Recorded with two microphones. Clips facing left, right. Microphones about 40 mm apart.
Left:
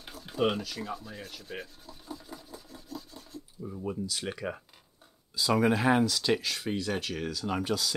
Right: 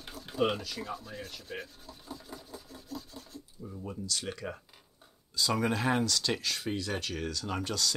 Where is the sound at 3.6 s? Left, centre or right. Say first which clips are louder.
Left 6 dB; centre.